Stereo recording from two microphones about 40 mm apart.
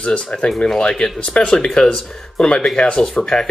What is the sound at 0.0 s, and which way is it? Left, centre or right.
Speech, left.